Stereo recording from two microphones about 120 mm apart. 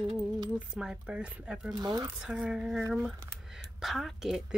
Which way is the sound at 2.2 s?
5° right (ahead or behind).